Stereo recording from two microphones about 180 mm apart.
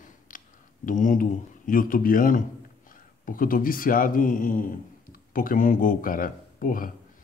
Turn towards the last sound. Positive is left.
turn(degrees=50)  # may be behind; listen again after turning